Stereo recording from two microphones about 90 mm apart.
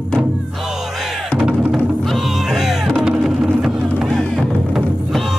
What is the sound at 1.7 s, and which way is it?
Music, centre (ahead or behind).